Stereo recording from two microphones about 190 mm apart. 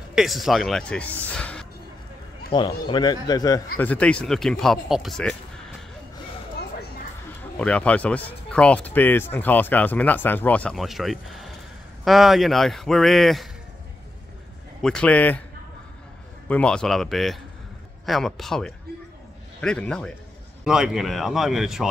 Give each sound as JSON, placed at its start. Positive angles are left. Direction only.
{"t": 0.1, "sound": "speech", "side_deg": 0}
{"t": 1.3, "sound": "music", "side_deg": 5}
{"t": 2.5, "sound": "a man's voice", "side_deg": 25}
{"t": 3.7, "sound": "speech", "side_deg": 10}
{"t": 7.5, "sound": "speech", "side_deg": 5}
{"t": 14.8, "sound": "speech", "side_deg": 5}
{"t": 16.4, "sound": "speech", "side_deg": 5}